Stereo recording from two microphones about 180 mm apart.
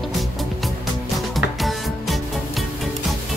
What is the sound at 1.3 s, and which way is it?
Music, centre (ahead or behind).